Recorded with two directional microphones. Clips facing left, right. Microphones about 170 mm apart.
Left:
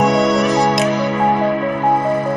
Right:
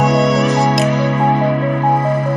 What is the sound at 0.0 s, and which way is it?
Music, centre (ahead or behind).